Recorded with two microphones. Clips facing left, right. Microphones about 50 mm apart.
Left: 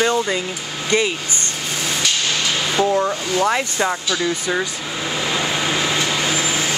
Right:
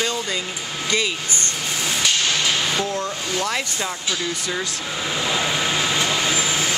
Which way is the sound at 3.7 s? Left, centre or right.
Left.